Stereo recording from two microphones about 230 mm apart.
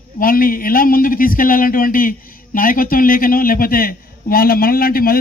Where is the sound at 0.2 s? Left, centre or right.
Left.